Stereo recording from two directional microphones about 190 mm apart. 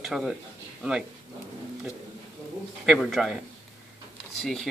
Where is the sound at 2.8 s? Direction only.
Centre (ahead or behind).